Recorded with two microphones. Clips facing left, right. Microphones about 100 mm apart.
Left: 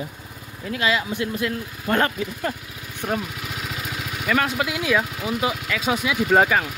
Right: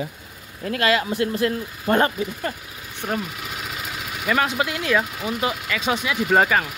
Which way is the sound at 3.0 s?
5° right (ahead or behind).